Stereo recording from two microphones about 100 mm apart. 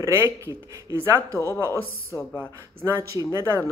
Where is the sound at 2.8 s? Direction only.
30° right (ahead or behind).